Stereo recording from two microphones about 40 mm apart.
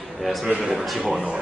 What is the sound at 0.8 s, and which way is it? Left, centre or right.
Speech, centre.